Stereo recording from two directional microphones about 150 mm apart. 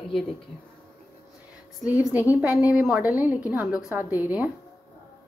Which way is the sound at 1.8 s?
10° right (ahead or behind).